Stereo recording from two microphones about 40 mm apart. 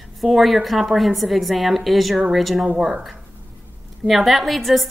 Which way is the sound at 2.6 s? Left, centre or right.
Right.